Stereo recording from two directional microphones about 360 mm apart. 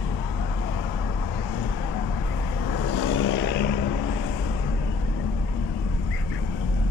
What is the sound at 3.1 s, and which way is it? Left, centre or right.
Vehicle, left.